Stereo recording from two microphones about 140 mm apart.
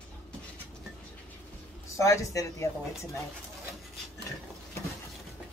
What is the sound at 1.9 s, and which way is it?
Speech, 20° left (ahead or behind).